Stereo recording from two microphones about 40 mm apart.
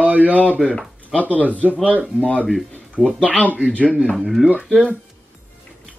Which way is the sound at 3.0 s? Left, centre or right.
Centre.